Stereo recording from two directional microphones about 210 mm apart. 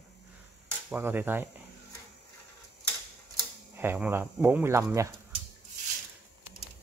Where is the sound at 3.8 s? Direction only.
10° right (ahead or behind).